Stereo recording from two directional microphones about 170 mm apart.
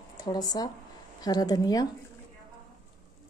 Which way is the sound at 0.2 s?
25° left (ahead or behind).